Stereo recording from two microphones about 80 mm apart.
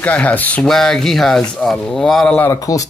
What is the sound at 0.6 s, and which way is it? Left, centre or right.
Speech, centre.